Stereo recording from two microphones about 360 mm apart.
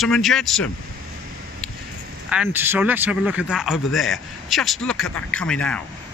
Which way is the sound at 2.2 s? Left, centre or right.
Centre.